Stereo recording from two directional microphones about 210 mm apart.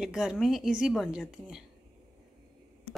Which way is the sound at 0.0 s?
5° right (ahead or behind).